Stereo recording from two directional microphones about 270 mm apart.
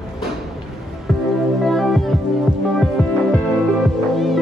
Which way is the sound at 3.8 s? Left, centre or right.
Centre.